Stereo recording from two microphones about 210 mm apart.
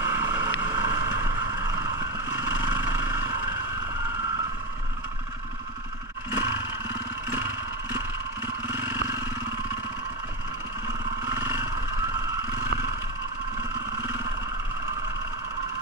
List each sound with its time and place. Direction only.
0.0 s vehicle: 10° right (ahead or behind)
0.7 s boat: 15° right (ahead or behind)
2.3 s vehicle: 10° right (ahead or behind)
6.3 s roar: 10° right (ahead or behind)
8.6 s vehicle: 10° right (ahead or behind)
11.2 s vehicle: 10° right (ahead or behind)